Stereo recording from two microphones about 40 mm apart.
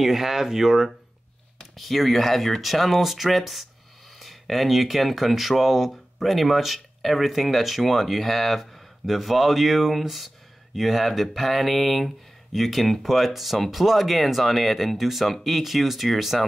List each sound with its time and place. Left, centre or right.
0.0 s speech: centre